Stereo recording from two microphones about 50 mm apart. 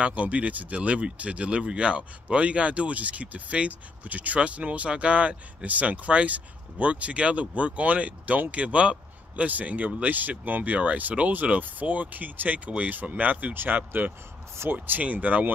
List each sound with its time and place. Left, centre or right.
0.0 s speech: right